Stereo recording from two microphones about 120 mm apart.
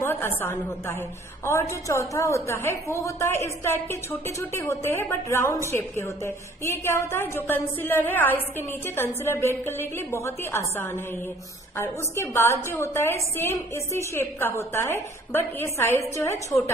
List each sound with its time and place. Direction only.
0.0 s a woman's voice: 20° left (ahead or behind)